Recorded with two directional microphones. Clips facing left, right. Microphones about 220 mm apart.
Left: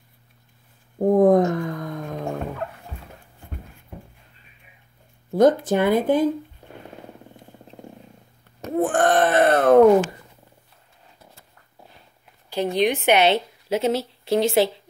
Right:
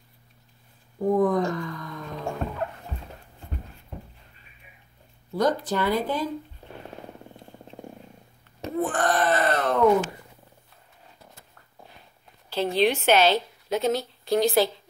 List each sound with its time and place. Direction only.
0.9 s a sound: 50° left (ahead or behind)
5.3 s groan: 50° left (ahead or behind)
8.7 s groan: 50° left (ahead or behind)
12.4 s a woman's voice: 15° left (ahead or behind)